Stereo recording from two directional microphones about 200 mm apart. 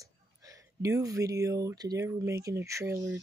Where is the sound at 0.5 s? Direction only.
15° right (ahead or behind).